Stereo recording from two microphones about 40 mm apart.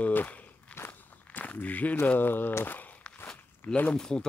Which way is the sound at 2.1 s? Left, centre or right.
Left.